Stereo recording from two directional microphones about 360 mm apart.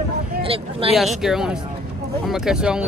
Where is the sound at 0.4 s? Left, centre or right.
Centre.